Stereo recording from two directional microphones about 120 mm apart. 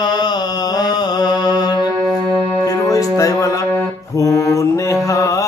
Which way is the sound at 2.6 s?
30° left (ahead or behind).